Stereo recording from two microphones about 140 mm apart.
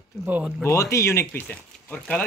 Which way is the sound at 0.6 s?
20° left (ahead or behind).